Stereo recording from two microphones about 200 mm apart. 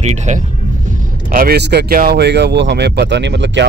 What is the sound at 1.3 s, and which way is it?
Speech, 50° right (ahead or behind).